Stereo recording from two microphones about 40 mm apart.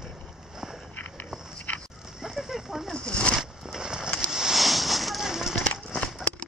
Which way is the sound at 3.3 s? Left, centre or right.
Centre.